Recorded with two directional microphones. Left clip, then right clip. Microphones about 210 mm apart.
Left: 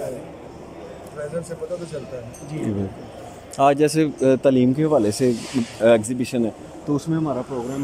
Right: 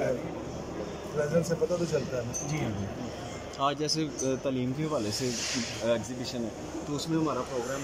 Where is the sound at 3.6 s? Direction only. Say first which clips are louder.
Left 13 dB; 55° left (ahead or behind).